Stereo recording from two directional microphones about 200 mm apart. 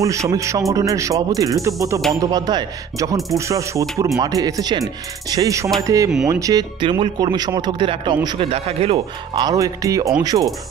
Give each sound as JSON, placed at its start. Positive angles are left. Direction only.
{"t": 0.0, "sound": "speech", "side_deg": -15}
{"t": 8.9, "sound": "speech", "side_deg": -20}